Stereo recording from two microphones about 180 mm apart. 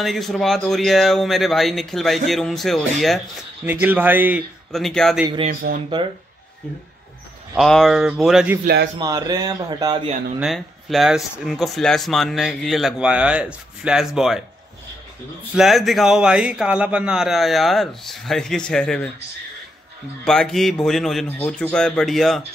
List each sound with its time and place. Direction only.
0.0 s speech: centre (ahead or behind)
3.8 s speech: 10° right (ahead or behind)
4.7 s speech: centre (ahead or behind)
5.5 s speech: 50° right (ahead or behind)
7.5 s speech: centre (ahead or behind)
9.0 s speech: 20° right (ahead or behind)
10.4 s speech: centre (ahead or behind)
15.5 s speech: centre (ahead or behind)
20.2 s speech: 5° left (ahead or behind)